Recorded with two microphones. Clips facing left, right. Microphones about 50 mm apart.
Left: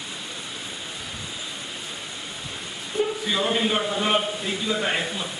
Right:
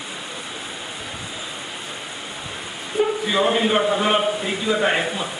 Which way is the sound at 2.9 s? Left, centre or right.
Centre.